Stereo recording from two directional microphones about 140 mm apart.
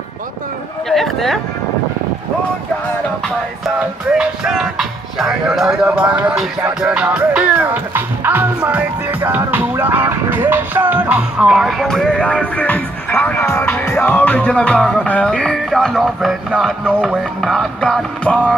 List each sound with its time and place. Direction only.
0.8 s music: centre (ahead or behind)
4.2 s music: 5° right (ahead or behind)